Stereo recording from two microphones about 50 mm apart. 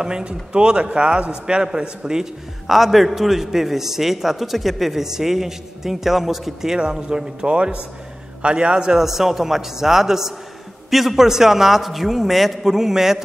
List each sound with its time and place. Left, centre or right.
0.0 s a man's voice: centre
2.6 s a man's voice: centre